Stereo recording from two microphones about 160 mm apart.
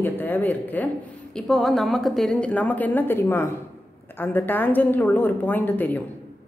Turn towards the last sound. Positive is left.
turn(degrees=10)  # may be behind; listen again after turning